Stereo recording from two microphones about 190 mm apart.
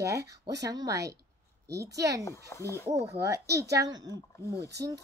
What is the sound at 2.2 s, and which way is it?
Speech, 15° left (ahead or behind).